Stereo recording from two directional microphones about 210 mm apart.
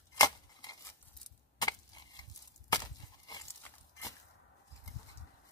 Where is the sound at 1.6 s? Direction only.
20° left (ahead or behind).